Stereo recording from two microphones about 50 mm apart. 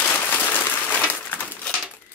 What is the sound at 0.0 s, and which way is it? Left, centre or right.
Applause, left.